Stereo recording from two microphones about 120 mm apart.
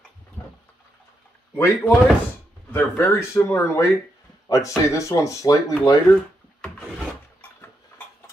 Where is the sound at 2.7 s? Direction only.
20° left (ahead or behind).